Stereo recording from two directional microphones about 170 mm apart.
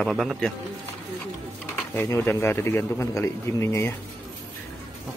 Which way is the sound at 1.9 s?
15° left (ahead or behind).